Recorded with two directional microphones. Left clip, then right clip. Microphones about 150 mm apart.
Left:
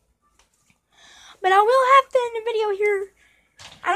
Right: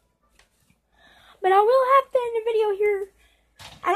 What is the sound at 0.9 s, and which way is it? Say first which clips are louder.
A woman's voice: even; 15° left (ahead or behind).